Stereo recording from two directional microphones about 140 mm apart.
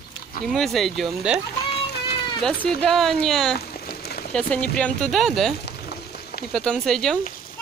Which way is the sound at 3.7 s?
90° left.